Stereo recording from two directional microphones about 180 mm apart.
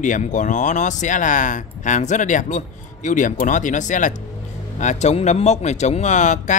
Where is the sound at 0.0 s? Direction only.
45° left (ahead or behind).